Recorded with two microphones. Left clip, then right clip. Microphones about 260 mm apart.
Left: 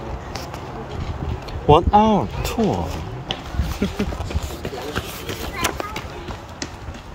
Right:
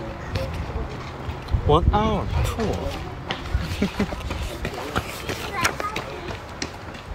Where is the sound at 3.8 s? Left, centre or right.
Centre.